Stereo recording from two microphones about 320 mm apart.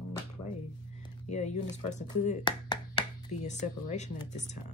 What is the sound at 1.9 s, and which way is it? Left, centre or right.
Speech, left.